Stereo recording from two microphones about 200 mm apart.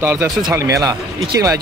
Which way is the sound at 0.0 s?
10° right (ahead or behind).